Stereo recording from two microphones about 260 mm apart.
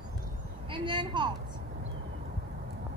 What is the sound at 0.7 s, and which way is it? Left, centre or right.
Speech, centre.